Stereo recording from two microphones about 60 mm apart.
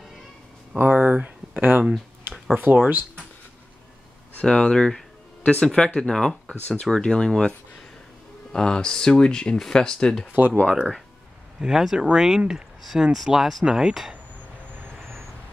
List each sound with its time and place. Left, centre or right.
0.7 s speech: right
4.4 s a sound: centre
5.5 s speech: centre
10.3 s speech: right
10.6 s speech: left
11.6 s speech: centre